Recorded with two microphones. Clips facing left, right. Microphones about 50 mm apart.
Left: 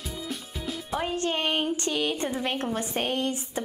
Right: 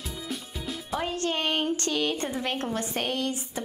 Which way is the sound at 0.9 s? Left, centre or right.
Left.